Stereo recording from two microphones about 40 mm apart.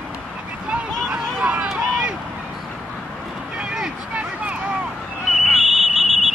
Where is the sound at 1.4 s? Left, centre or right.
Right.